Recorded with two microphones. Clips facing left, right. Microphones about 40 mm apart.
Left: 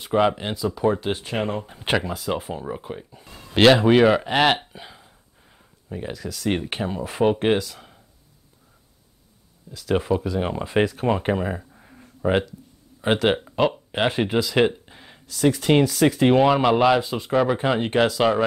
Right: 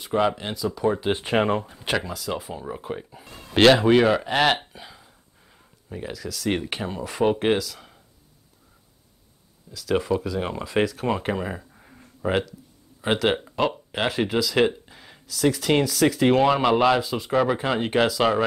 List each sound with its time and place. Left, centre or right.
0.0 s speech: centre
1.1 s speech: right
2.0 s speech: left
2.6 s speech: centre
2.9 s speech: centre
3.5 s speech: centre
4.7 s a sound: centre
7.2 s speech: centre
9.8 s speech: centre
14.9 s a sound: centre
15.1 s speech: centre